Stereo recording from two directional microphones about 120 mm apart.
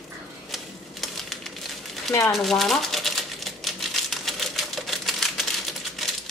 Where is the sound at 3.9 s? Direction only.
Centre (ahead or behind).